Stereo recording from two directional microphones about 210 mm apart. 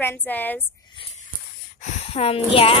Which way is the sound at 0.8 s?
25° left (ahead or behind).